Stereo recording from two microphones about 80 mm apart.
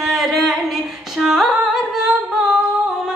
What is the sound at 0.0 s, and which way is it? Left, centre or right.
Music, centre.